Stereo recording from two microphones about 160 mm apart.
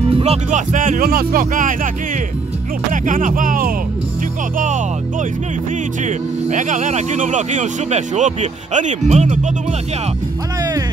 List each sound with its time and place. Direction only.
0.1 s speech: 40° right (ahead or behind); by 1.9 s 55° right (ahead or behind)
2.9 s speech: 55° right (ahead or behind)
4.6 s speech: 50° right (ahead or behind)
6.0 s speech: 50° right (ahead or behind)